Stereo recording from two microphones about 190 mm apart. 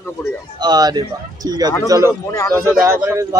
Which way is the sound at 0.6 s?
20° right (ahead or behind).